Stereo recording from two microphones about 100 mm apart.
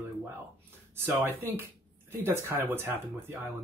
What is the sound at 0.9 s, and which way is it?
Speech, 25° right (ahead or behind).